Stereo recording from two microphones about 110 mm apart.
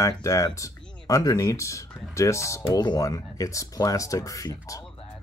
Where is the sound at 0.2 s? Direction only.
30° left (ahead or behind).